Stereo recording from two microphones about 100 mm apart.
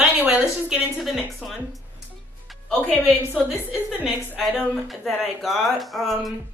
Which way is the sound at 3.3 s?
15° right (ahead or behind).